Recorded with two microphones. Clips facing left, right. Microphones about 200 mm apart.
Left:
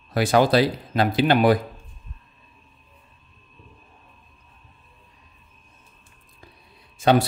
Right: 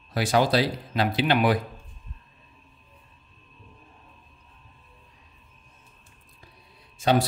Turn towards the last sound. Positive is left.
turn(degrees=60)  # may be behind; listen again after turning